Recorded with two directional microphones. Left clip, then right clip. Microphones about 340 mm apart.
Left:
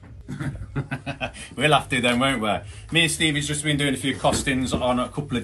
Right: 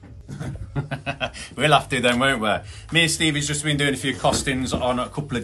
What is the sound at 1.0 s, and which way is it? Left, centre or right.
A man's voice, centre.